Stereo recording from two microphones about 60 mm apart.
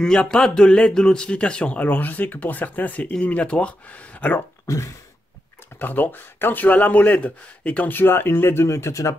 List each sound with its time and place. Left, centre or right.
0.0 s a man's voice: centre
4.6 s a sound: left
5.8 s speech: left